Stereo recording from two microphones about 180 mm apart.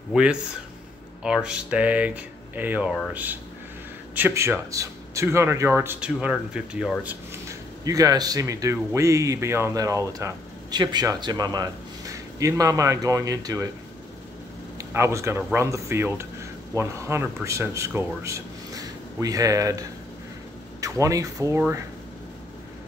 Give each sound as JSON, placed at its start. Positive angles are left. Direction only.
{"t": 0.1, "sound": "speech", "side_deg": -5}
{"t": 7.8, "sound": "speech", "side_deg": -20}
{"t": 14.8, "sound": "speech", "side_deg": -15}